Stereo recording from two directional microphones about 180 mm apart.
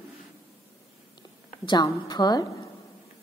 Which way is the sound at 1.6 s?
25° left (ahead or behind).